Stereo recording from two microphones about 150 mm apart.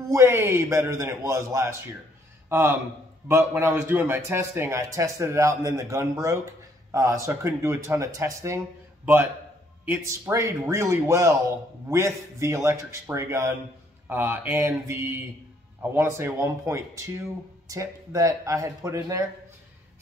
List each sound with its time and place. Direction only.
0.1 s a man's voice: 15° right (ahead or behind)
9.8 s a man's voice: 15° right (ahead or behind)